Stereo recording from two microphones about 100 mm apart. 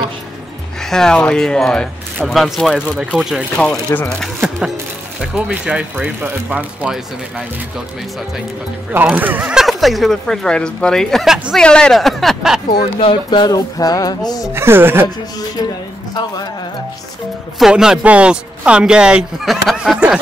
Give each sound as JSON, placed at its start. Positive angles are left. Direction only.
{"t": 0.8, "sound": "speech", "side_deg": 5}
{"t": 3.5, "sound": "speech", "side_deg": 10}
{"t": 5.3, "sound": "speech", "side_deg": -10}
{"t": 8.9, "sound": "speech", "side_deg": -15}
{"t": 9.6, "sound": "speech", "side_deg": 0}
{"t": 13.0, "sound": "music", "side_deg": 55}
{"t": 14.5, "sound": "speech", "side_deg": -25}
{"t": 17.6, "sound": "speech", "side_deg": -5}